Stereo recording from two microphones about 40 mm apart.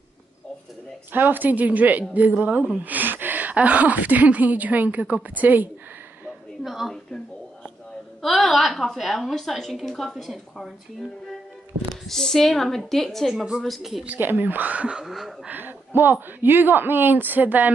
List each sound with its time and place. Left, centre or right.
1.1 s a woman's voice: right
6.6 s a woman's voice: centre
8.2 s a woman's voice: centre
12.1 s a woman's voice: centre
14.2 s speech: right
15.0 s a woman's voice: centre
15.5 s speech: right